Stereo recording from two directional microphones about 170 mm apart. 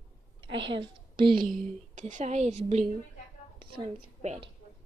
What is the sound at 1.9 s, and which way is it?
A woman's voice, 45° right (ahead or behind).